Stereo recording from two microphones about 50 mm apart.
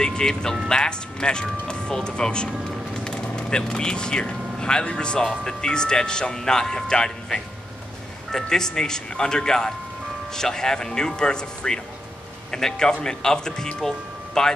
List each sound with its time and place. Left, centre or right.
0.0 s speech: centre